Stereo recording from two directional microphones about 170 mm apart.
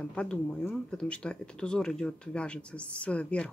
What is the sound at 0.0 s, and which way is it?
Speech, 5° left (ahead or behind).